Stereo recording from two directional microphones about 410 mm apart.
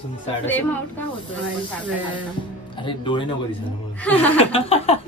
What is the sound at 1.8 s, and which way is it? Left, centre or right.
Speech, centre.